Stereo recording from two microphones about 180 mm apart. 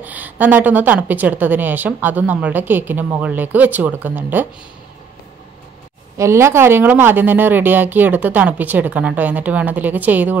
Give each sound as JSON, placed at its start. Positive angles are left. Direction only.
{"t": 0.0, "sound": "a woman's voice", "side_deg": -10}
{"t": 6.1, "sound": "a woman's voice", "side_deg": -15}